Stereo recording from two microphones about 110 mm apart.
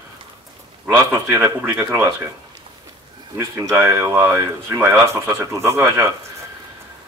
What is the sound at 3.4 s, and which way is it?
Speech, 30° right (ahead or behind).